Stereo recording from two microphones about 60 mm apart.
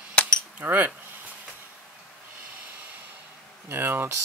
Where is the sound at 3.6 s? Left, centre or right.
Right.